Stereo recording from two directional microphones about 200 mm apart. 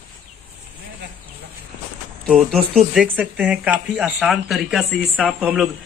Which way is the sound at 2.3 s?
Centre (ahead or behind).